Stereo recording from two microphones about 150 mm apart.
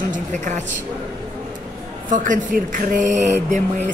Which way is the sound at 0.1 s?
55° right (ahead or behind).